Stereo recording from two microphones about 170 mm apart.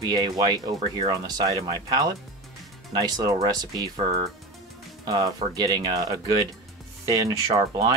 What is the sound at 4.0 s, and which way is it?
Speech, 35° right (ahead or behind).